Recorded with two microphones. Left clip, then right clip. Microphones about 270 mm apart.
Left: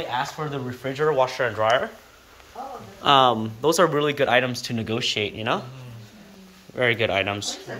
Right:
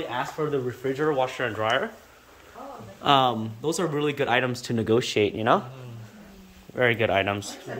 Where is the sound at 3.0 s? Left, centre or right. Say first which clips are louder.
Left 4 dB; centre.